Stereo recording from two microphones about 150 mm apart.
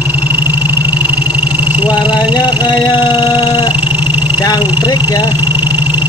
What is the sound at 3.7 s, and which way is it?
Vehicle, 10° right (ahead or behind).